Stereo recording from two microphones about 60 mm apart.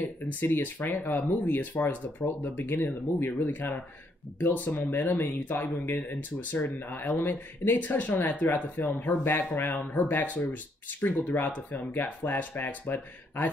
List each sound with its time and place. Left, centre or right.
0.0 s speech: left